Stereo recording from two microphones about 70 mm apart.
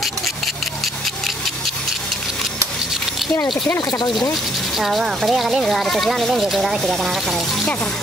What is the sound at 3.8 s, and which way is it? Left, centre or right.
Speech, left.